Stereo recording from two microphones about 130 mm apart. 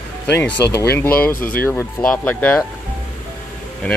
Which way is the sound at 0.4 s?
20° left (ahead or behind).